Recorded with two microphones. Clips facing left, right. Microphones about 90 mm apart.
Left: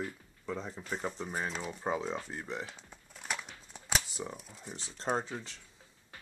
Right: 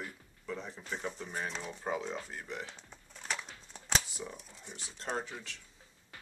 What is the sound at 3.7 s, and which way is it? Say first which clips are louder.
Shuffling cards: even; 5° left (ahead or behind).